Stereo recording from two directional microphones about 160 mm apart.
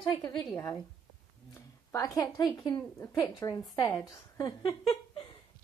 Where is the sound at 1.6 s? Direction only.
20° left (ahead or behind).